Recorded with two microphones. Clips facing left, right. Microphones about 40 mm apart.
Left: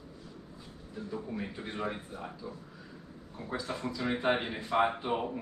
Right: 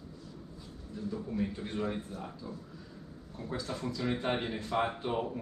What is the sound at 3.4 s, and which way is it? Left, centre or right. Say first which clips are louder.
A man's voice: left 1 dB; centre.